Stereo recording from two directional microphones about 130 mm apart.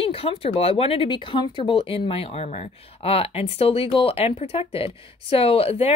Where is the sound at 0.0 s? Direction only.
45° left (ahead or behind).